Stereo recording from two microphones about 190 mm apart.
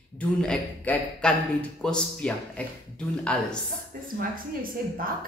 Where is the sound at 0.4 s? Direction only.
5° left (ahead or behind).